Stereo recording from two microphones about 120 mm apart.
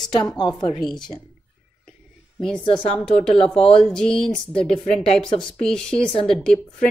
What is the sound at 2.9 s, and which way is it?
A woman's voice, 5° left (ahead or behind).